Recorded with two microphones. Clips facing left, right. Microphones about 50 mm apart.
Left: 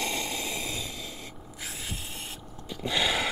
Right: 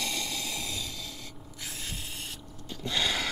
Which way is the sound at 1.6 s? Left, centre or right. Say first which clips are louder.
Left 2 dB; centre.